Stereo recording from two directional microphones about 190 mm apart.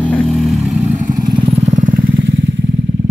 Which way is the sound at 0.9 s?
40° right (ahead or behind).